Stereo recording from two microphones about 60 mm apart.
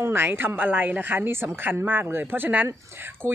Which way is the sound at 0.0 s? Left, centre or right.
Right.